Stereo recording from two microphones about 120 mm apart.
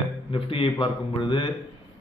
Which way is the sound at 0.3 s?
45° left (ahead or behind).